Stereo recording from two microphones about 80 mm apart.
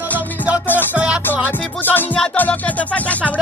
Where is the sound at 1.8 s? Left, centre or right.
Left.